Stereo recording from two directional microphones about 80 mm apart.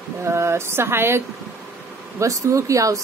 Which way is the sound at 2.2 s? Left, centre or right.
Right.